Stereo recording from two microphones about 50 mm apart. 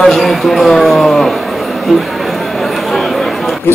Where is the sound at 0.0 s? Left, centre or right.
Centre.